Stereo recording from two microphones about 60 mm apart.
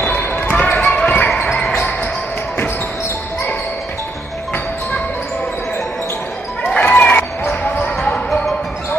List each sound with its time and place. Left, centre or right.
0.0 s basketball bounce: left
6.8 s basketball bounce: left